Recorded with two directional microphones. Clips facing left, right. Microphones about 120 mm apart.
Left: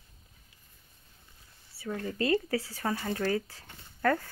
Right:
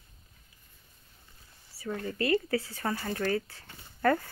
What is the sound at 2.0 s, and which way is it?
Speech, 20° left (ahead or behind).